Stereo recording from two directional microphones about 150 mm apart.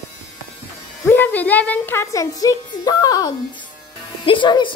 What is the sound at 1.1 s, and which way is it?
A woman's voice, 10° left (ahead or behind).